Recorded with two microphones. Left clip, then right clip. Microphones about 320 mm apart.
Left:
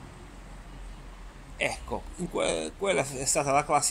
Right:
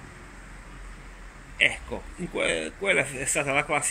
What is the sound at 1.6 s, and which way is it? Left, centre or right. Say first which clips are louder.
Speech: right 6 dB; centre.